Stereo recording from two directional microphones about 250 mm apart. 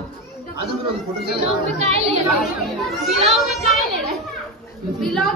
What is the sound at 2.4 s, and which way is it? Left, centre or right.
Speech, centre.